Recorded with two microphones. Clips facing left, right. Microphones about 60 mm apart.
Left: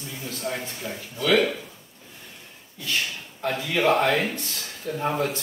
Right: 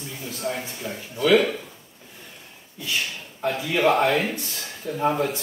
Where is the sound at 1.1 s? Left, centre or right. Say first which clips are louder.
Right 3 dB; right.